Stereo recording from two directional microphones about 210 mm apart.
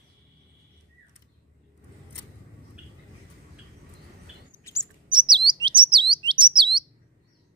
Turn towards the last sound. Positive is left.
turn(degrees=-20)  # may be behind; listen again after turning